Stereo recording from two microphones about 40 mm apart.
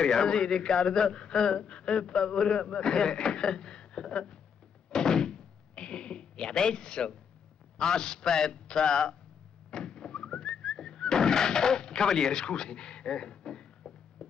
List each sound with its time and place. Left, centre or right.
0.0 s a man's voice: centre
4.9 s door: centre
7.7 s a man's voice: centre
9.7 s whistling: centre